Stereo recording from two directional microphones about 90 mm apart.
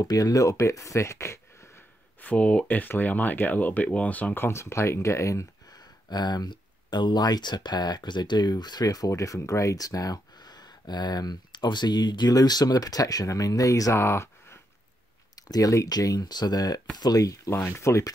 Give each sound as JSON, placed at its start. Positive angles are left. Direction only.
{"t": 0.0, "sound": "speech", "side_deg": 40}
{"t": 2.2, "sound": "speech", "side_deg": 15}
{"t": 6.0, "sound": "speech", "side_deg": 50}
{"t": 15.3, "sound": "speech", "side_deg": 45}
{"t": 17.5, "sound": "speech", "side_deg": 30}